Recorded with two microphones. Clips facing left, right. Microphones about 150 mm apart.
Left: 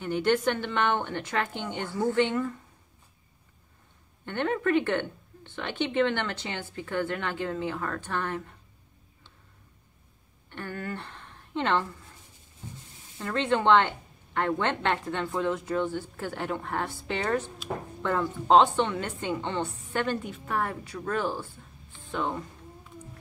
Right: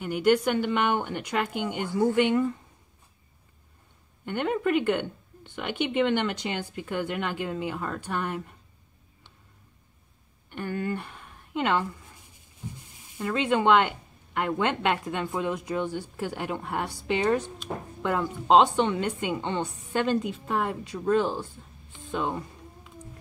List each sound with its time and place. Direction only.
0.0 s speech: 10° right (ahead or behind)
4.3 s speech: 10° right (ahead or behind)
10.5 s a woman's voice: 15° right (ahead or behind)
21.9 s music: 15° right (ahead or behind)